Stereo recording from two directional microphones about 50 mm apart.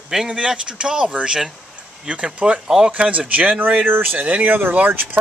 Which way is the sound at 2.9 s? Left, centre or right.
Right.